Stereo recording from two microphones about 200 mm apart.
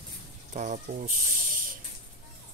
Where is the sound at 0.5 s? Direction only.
40° right (ahead or behind).